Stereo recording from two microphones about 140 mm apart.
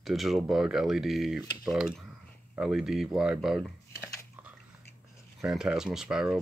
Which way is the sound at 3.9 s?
20° left (ahead or behind).